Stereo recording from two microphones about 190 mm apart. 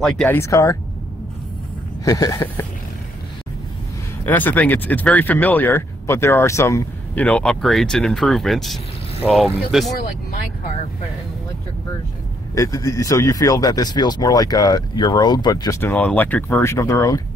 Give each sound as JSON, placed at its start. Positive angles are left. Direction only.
{"t": 0.0, "sound": "speech", "side_deg": 5}
{"t": 0.4, "sound": "speech", "side_deg": 15}
{"t": 2.0, "sound": "speech", "side_deg": 20}
{"t": 4.3, "sound": "speech", "side_deg": 10}
{"t": 12.5, "sound": "speech", "side_deg": 15}